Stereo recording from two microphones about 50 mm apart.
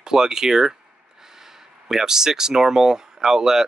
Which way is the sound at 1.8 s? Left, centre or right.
Centre.